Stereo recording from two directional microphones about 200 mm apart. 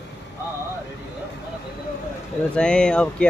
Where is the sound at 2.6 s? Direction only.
5° left (ahead or behind).